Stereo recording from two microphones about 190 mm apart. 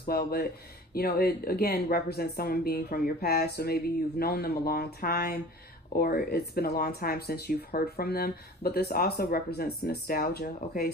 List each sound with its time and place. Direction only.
0.0 s speech: 55° left (ahead or behind)